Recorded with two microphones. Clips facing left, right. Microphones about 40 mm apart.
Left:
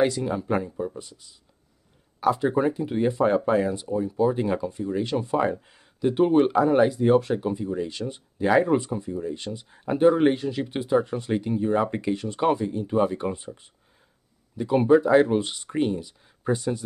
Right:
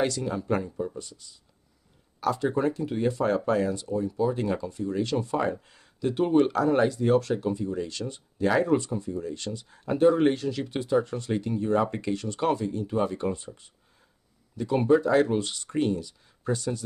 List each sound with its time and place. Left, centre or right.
0.0 s speech: centre